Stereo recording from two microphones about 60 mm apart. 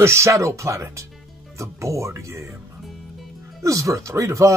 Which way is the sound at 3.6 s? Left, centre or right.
Right.